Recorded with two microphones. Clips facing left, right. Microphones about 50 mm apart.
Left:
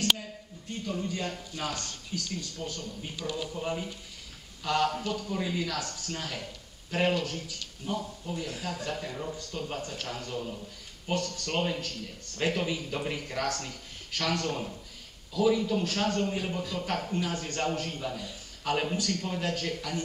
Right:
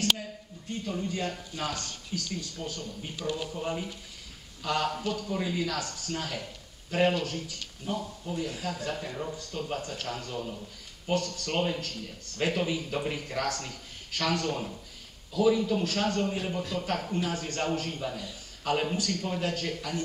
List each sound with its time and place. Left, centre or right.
0.8 s a man's voice: centre